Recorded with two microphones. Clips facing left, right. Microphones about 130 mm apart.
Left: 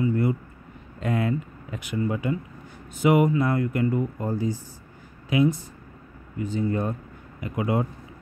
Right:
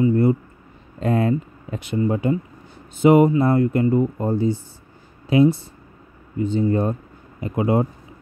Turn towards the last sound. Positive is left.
turn(degrees=-30)  # may be behind; listen again after turning